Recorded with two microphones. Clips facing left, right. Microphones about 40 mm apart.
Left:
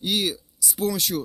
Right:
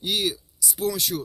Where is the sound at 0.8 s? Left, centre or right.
Left.